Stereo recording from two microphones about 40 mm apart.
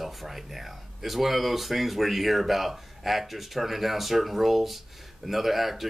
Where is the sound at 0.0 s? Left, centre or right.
Centre.